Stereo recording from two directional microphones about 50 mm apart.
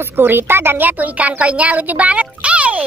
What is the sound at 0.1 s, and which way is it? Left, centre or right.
A woman's voice, right.